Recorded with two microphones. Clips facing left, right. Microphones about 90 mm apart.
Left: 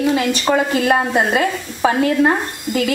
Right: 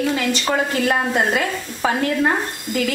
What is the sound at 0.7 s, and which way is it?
A woman's voice, 15° left (ahead or behind).